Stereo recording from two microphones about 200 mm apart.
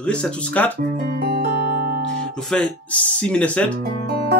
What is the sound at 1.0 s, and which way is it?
Music, 50° right (ahead or behind).